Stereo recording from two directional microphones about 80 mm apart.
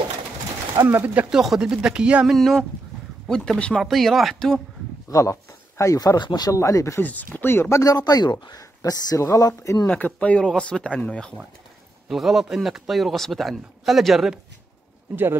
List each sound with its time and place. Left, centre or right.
0.8 s speech: right
1.3 s speech: centre
2.2 s a man's voice: centre
3.7 s a man's voice: centre
5.1 s speech: left
5.9 s speech: left
6.5 s speech: left
7.0 s speech: left
7.7 s speech: left
9.8 s speech: centre
12.1 s a man's voice: centre